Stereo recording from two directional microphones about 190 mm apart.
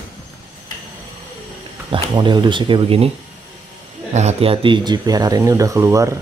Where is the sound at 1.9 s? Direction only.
25° right (ahead or behind).